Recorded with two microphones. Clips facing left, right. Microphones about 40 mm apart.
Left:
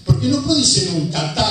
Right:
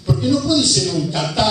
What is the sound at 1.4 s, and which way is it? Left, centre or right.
Speech, centre.